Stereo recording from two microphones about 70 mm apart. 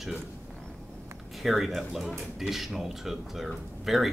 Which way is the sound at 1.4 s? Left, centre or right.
Centre.